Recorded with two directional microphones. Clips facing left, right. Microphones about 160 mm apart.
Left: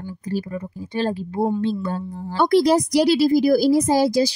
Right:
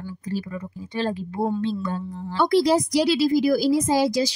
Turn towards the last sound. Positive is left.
turn(degrees=30)  # may be behind; listen again after turning